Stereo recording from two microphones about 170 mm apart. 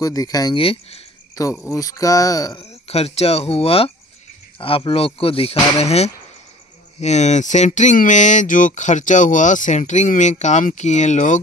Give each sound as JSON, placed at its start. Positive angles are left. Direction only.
{"t": 0.0, "sound": "speech", "side_deg": 20}
{"t": 0.6, "sound": "speech", "side_deg": 35}
{"t": 1.3, "sound": "speech", "side_deg": 20}
{"t": 2.7, "sound": "speech", "side_deg": 35}